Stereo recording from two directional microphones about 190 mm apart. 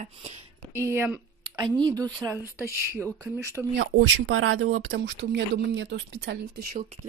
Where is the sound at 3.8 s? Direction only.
90° right; by 5.4 s 70° right (ahead or behind).